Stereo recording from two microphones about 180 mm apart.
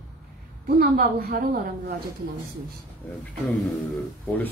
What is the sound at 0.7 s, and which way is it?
A woman's voice, 60° right (ahead or behind).